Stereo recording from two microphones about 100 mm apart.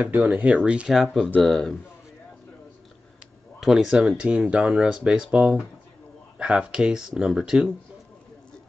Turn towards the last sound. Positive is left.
turn(degrees=-5)  # may be behind; listen again after turning